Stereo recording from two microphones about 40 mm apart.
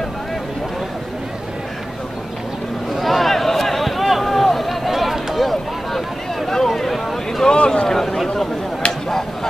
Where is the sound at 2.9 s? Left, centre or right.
Centre.